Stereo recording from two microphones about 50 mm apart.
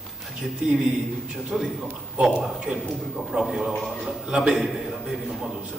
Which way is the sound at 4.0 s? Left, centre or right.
Centre.